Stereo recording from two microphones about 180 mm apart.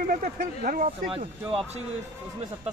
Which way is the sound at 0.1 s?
50° right (ahead or behind).